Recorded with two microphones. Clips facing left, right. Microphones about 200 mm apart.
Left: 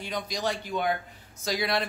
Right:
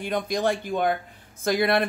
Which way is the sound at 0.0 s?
55° right (ahead or behind).